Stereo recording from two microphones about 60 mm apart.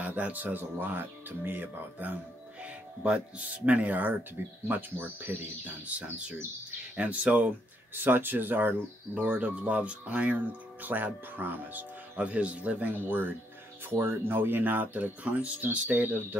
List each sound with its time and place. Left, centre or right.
0.0 s speech: right
7.0 s speech: right